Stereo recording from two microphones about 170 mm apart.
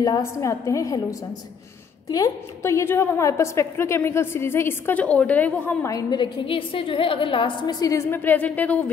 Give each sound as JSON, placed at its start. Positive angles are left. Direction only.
{"t": 0.0, "sound": "a woman's voice", "side_deg": 20}
{"t": 2.0, "sound": "a woman's voice", "side_deg": 20}